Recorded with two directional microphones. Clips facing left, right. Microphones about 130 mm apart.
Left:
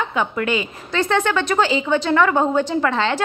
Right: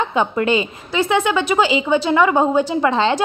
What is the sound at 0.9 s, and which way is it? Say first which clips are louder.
A woman's voice: right 2 dB; 10° right (ahead or behind).